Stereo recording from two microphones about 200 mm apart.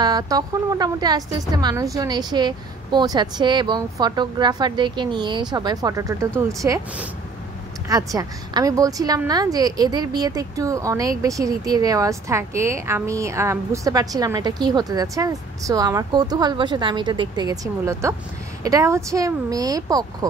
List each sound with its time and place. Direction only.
0.0 s a woman's voice: 20° right (ahead or behind)